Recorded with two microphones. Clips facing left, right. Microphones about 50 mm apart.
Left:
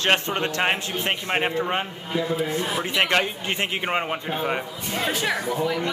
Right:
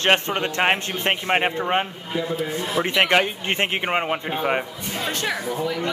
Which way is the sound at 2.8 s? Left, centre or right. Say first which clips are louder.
Right 4 dB; right.